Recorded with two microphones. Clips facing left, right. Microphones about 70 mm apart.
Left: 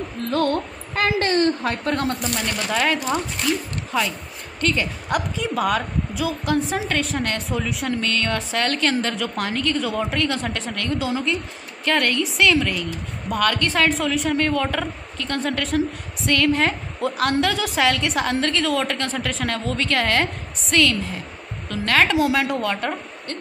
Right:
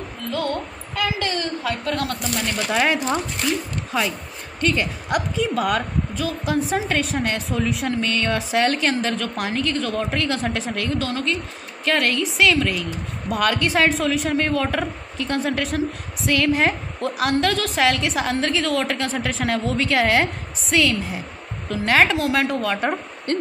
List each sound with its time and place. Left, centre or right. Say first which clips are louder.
0.3 s a woman's voice: left 4 dB; left
2.7 s speech: right 1 dB; centre
4.6 s a woman's voice: right 1 dB; centre
11.0 s a woman's voice: left 1 dB; centre
11.8 s a woman's voice: even; centre